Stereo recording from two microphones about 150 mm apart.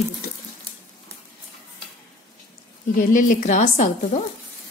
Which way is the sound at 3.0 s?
60° left (ahead or behind).